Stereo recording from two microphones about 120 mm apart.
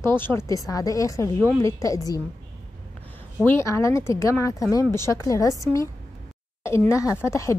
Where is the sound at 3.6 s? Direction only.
25° left (ahead or behind).